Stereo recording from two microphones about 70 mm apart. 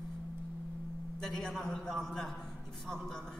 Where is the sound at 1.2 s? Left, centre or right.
Centre.